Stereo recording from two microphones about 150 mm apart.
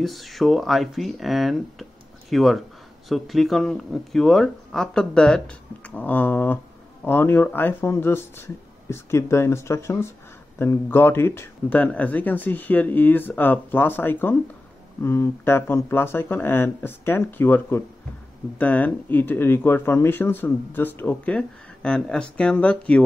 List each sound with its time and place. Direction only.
0.0 s speech: centre (ahead or behind)